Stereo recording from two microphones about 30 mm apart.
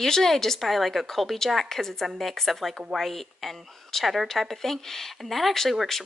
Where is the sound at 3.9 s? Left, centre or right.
Centre.